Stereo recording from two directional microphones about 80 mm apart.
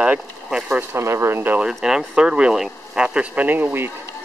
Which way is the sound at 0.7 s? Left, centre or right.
Right.